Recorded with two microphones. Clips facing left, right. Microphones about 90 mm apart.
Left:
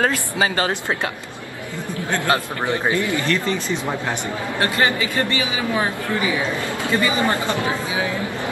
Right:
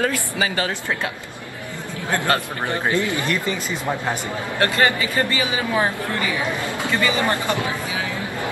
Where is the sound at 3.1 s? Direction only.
15° right (ahead or behind).